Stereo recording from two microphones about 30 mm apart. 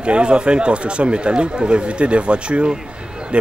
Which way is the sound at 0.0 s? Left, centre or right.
Right.